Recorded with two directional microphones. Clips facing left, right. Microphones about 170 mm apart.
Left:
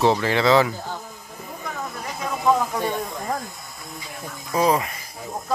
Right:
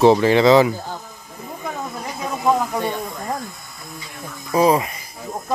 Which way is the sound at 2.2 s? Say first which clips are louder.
Right 1 dB; 15° right (ahead or behind).